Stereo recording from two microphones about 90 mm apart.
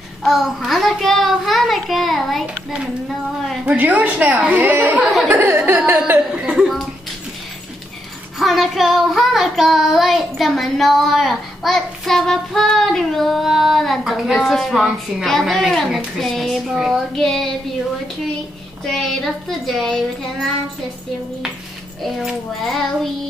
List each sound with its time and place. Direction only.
0.2 s child singing: centre (ahead or behind)
3.6 s a woman's voice: 20° right (ahead or behind)
5.0 s child singing: centre (ahead or behind)
5.3 s speech: 20° right (ahead or behind)
8.4 s child singing: centre (ahead or behind)
18.9 s child singing: 5° left (ahead or behind)
22.0 s child singing: centre (ahead or behind)